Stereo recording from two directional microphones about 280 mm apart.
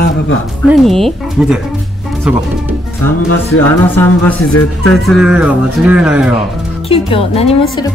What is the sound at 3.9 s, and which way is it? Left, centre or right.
Speech, centre.